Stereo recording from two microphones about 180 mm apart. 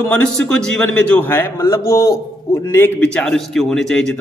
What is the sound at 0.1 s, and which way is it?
A man's voice, 5° left (ahead or behind).